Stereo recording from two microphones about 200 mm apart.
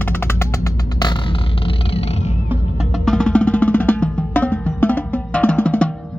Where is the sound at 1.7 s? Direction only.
30° left (ahead or behind).